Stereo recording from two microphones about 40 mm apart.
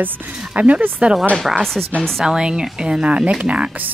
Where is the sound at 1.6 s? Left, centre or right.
Centre.